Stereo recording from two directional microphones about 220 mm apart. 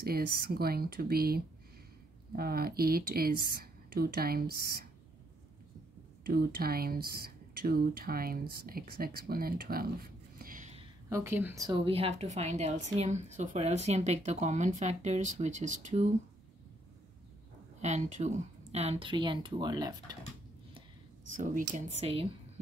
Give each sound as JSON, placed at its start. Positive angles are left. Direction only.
{"t": 0.0, "sound": "speech", "side_deg": -45}
{"t": 6.2, "sound": "speech", "side_deg": -40}
{"t": 11.1, "sound": "a woman's voice", "side_deg": -10}
{"t": 17.7, "sound": "a woman's voice", "side_deg": -30}
{"t": 21.4, "sound": "a woman's voice", "side_deg": -35}
{"t": 22.0, "sound": "a woman's voice", "side_deg": -25}